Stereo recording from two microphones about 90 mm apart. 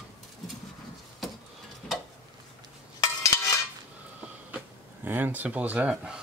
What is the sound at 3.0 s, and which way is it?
Dishes, 35° left (ahead or behind).